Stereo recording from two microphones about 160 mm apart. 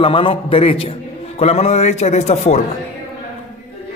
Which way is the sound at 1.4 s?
40° left (ahead or behind).